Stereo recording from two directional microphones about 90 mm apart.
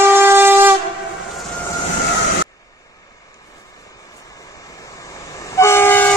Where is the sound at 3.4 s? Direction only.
40° left (ahead or behind); by 6.1 s 25° left (ahead or behind).